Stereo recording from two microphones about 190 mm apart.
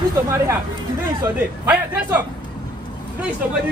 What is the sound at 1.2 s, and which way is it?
A man's voice, 10° right (ahead or behind).